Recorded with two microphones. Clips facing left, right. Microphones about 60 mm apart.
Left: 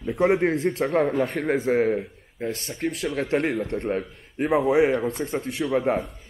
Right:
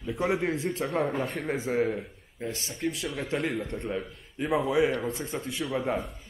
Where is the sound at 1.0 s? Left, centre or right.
Left.